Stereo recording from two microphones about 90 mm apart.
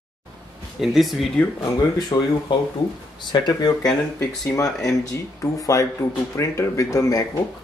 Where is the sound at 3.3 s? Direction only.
50° left (ahead or behind).